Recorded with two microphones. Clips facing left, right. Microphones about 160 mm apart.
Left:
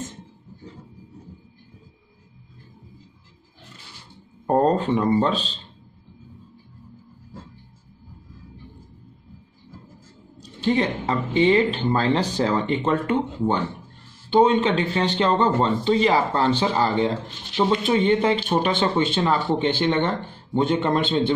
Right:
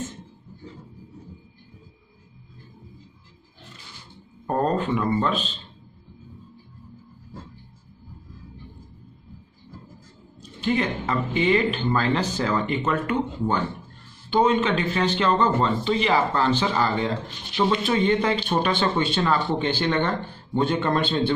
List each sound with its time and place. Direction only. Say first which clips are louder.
4.5 s speech: left 4 dB; 30° left (ahead or behind)
10.6 s speech: left 2 dB; 30° left (ahead or behind)